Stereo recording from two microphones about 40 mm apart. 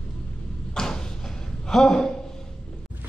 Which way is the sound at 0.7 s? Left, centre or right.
Centre.